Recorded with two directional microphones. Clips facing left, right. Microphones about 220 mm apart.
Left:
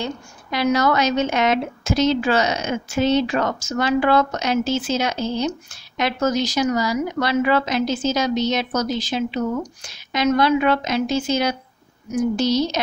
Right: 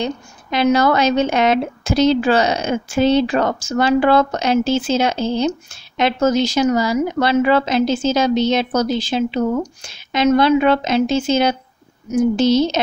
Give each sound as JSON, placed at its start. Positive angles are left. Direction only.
{"t": 0.0, "sound": "a woman's voice", "side_deg": -25}